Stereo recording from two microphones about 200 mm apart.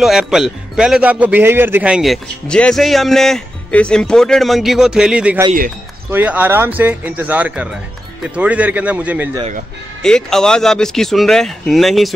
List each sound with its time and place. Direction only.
0.0 s a man's voice: centre (ahead or behind)
10.0 s a man's voice: 5° left (ahead or behind)